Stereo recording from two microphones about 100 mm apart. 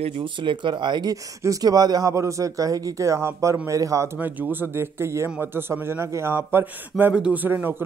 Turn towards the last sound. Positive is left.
turn(degrees=-20)  # may be behind; listen again after turning